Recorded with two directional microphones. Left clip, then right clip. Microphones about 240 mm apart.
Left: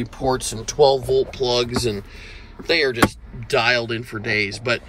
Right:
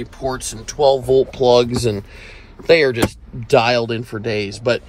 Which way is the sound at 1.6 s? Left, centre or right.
Centre.